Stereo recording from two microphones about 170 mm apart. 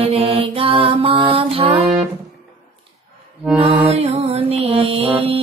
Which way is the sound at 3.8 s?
35° right (ahead or behind).